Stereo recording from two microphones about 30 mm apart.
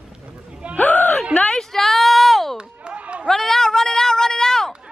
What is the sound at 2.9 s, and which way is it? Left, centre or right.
Chatter, right.